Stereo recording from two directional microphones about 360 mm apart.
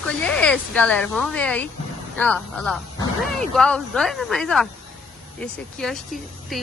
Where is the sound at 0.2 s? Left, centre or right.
Centre.